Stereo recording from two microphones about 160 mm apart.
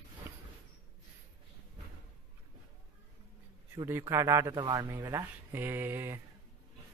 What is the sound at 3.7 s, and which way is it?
A man's voice, 20° right (ahead or behind).